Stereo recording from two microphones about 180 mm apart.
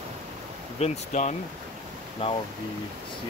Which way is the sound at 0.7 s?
35° left (ahead or behind).